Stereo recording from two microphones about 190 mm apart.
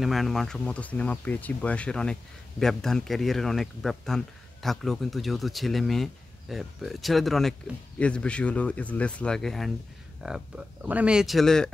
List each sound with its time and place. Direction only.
0.0 s a man's voice: centre (ahead or behind)